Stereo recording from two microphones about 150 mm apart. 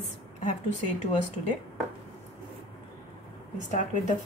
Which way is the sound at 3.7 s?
60° left (ahead or behind).